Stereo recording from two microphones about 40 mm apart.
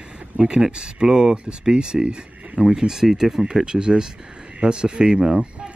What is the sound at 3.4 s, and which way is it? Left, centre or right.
Speech, centre.